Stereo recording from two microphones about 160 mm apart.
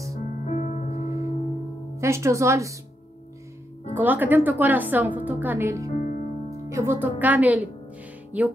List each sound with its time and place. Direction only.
0.5 s music: 45° left (ahead or behind)
2.0 s a woman's voice: 15° right (ahead or behind)
3.9 s a woman's voice: 10° right (ahead or behind)
5.9 s music: 55° left (ahead or behind)
6.7 s a woman's voice: 15° right (ahead or behind)